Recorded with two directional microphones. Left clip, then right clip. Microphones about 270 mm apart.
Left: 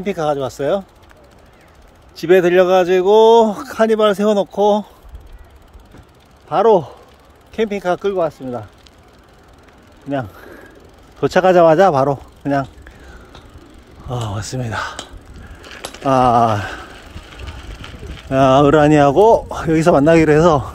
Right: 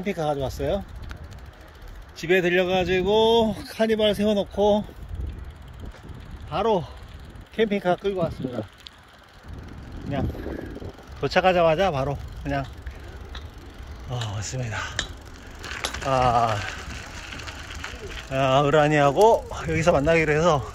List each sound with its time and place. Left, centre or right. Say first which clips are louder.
0.0 s speech: left 7 dB; centre
2.1 s speech: left 9 dB; centre
6.5 s speech: left 11 dB; centre
7.5 s speech: left 4 dB; centre
11.1 s speech: left 8 dB; left
14.3 s speech: left 8 dB; left
18.3 s speech: left 9 dB; left